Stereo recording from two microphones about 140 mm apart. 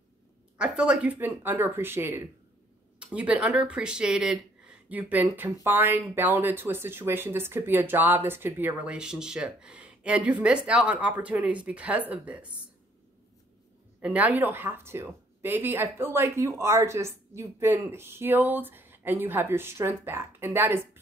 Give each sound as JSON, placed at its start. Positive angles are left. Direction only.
{"t": 0.6, "sound": "speech", "side_deg": -5}
{"t": 14.0, "sound": "speech", "side_deg": -10}